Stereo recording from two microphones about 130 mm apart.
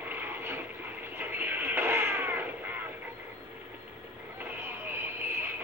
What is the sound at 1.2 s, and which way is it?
Cat, 15° right (ahead or behind).